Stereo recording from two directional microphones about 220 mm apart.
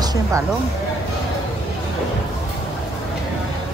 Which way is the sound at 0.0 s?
15° right (ahead or behind).